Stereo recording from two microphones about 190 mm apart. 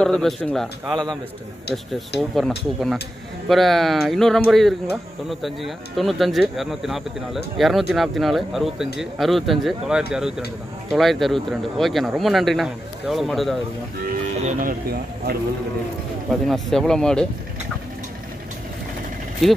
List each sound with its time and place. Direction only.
0.0 s speech: 5° left (ahead or behind)
2.1 s speech: centre (ahead or behind)
14.4 s speech: 45° right (ahead or behind)
16.4 s speech: centre (ahead or behind)